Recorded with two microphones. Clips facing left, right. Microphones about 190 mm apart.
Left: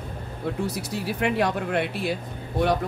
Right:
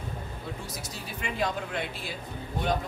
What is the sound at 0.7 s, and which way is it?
Speech, 65° left (ahead or behind).